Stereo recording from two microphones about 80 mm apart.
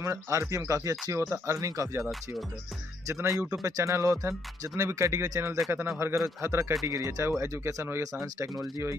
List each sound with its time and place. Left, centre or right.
0.0 s speech: right
1.2 s speech: right
3.1 s speech: right
5.7 s speech: right